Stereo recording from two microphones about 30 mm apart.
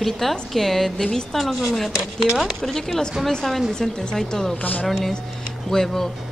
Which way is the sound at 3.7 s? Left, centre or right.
Left.